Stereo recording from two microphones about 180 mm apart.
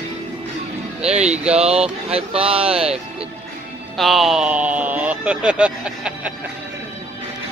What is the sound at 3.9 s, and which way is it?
Speech, centre (ahead or behind).